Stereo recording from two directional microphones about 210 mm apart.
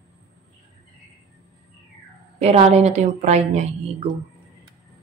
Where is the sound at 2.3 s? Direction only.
30° right (ahead or behind).